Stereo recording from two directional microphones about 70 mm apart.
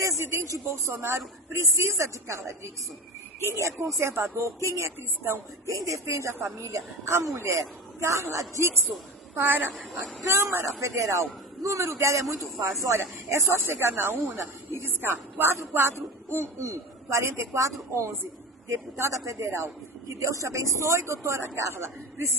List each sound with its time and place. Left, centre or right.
0.0 s a man's voice: right
9.4 s a woman's voice: right